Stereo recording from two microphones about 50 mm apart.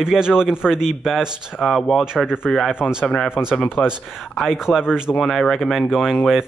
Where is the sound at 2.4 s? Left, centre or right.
Centre.